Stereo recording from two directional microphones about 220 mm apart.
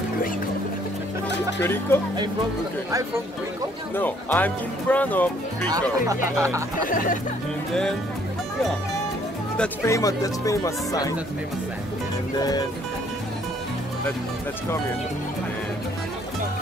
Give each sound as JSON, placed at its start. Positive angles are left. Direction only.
{"t": 1.6, "sound": "speech", "side_deg": 10}
{"t": 3.9, "sound": "speech", "side_deg": 10}
{"t": 6.0, "sound": "speech", "side_deg": -15}
{"t": 6.8, "sound": "speech", "side_deg": 40}
{"t": 9.6, "sound": "speech", "side_deg": 15}
{"t": 12.4, "sound": "speech", "side_deg": 15}